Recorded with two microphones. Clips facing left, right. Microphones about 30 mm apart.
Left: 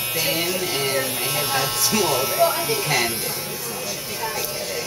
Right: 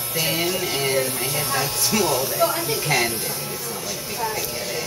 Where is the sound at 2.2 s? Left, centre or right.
Left.